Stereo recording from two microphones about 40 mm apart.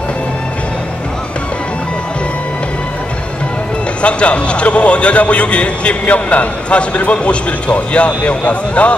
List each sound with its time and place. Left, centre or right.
4.0 s a man's voice: left